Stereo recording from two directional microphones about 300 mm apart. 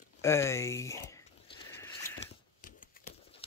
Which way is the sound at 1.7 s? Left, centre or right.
Centre.